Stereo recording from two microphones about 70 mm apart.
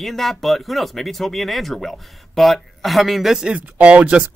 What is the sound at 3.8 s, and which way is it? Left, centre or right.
Speech, centre.